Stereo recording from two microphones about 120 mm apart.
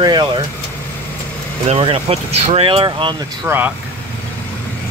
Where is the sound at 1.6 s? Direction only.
55° right (ahead or behind).